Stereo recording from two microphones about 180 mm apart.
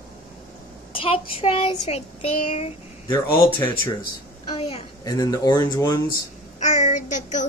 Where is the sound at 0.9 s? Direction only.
30° left (ahead or behind).